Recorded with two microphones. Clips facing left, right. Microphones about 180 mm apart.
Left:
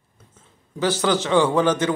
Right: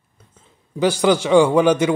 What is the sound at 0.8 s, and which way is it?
A man's voice, 15° right (ahead or behind).